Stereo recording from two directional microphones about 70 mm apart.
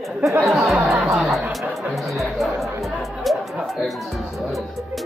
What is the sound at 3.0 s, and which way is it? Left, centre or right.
Music, centre.